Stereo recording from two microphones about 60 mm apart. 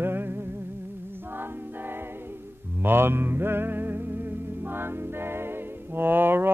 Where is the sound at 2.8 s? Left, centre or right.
Right.